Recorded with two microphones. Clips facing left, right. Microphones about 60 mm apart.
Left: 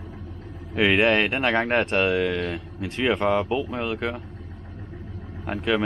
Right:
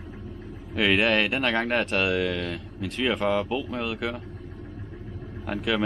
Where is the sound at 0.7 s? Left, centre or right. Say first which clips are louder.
Left 3 dB; centre.